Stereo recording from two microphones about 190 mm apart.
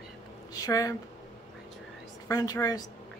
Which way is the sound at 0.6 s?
20° left (ahead or behind).